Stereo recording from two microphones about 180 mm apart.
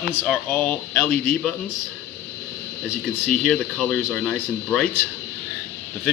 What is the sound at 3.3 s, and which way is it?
Speech, 5° left (ahead or behind).